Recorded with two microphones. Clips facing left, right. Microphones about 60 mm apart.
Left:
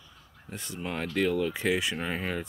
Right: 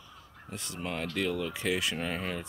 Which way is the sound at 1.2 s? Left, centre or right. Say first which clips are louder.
Left 7 dB; left.